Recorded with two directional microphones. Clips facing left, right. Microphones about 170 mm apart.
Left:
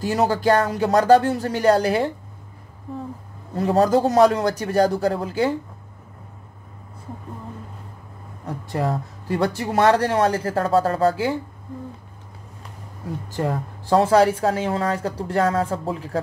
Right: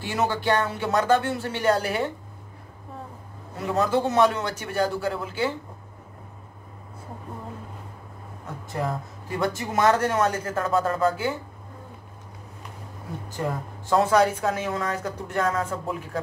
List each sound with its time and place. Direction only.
0.0 s speech: 40° left (ahead or behind)
3.5 s speech: 35° left (ahead or behind)
8.5 s speech: 35° left (ahead or behind)
13.4 s speech: 35° left (ahead or behind)